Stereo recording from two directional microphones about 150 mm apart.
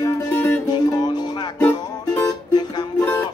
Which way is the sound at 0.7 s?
30° left (ahead or behind).